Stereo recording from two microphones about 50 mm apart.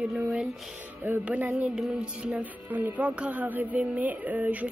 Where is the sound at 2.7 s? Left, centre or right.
Right.